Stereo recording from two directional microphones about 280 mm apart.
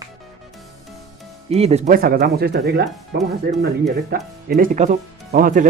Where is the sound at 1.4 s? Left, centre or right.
Right.